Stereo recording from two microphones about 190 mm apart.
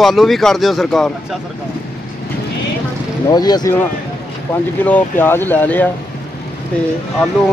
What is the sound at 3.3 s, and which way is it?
Speech, 20° left (ahead or behind).